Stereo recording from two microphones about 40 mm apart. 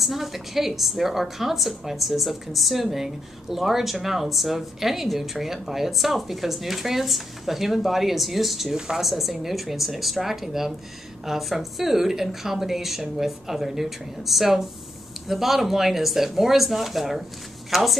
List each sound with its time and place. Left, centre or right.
0.0 s a woman's voice: centre
8.7 s a woman's voice: centre
9.0 s a woman's voice: centre